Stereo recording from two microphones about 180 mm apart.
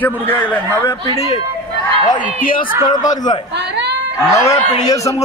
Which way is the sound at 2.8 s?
25° left (ahead or behind).